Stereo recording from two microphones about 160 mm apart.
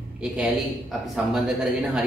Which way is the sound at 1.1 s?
5° right (ahead or behind).